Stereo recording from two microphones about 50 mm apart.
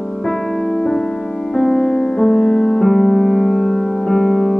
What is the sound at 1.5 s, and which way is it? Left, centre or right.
Music, centre.